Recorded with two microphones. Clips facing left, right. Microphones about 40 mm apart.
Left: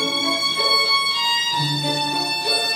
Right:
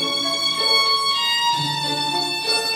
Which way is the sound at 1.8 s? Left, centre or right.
Centre.